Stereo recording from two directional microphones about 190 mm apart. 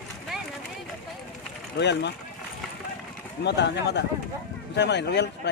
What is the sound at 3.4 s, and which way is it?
Speech, 65° left (ahead or behind).